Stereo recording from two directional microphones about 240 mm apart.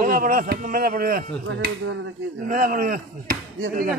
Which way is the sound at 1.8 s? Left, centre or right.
Right.